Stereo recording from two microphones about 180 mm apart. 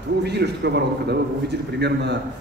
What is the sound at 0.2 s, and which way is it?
A man's voice, 65° right (ahead or behind).